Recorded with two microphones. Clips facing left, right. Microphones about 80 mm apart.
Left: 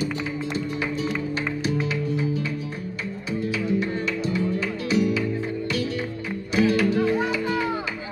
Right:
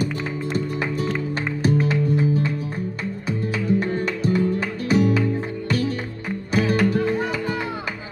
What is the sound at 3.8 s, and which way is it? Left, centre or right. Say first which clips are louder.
Music: right 2 dB; right.